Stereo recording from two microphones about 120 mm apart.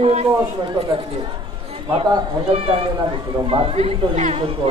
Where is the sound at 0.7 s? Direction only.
50° right (ahead or behind).